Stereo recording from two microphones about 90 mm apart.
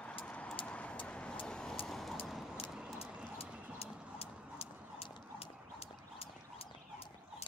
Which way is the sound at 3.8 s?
90° left.